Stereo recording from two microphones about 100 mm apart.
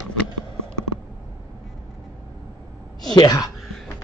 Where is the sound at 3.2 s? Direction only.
45° left (ahead or behind).